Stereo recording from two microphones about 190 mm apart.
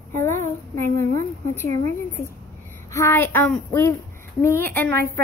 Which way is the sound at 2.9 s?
15° left (ahead or behind).